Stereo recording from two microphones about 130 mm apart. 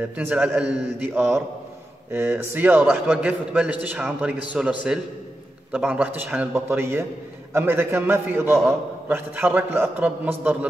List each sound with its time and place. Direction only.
0.1 s a man's voice: 10° right (ahead or behind)